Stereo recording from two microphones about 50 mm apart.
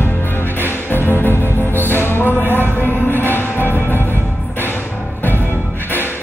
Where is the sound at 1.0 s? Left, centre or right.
Left.